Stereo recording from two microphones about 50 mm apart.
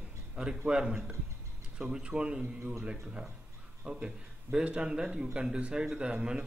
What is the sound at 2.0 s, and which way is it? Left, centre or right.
Speech, right.